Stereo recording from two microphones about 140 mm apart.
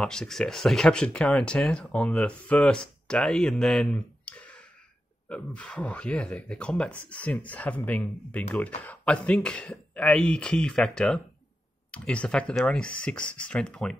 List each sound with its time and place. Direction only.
0.0 s speech: 5° left (ahead or behind)